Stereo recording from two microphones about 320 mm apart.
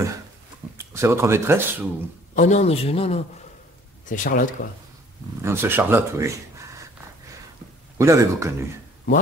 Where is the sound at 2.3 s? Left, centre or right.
Left.